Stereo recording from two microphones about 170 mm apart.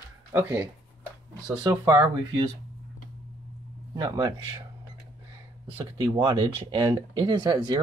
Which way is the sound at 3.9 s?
25° right (ahead or behind).